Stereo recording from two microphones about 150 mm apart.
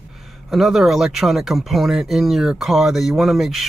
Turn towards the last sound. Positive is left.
turn(degrees=0)  # may be behind; listen again after turning